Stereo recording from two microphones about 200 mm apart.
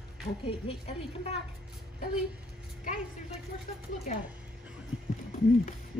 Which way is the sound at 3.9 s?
35° left (ahead or behind).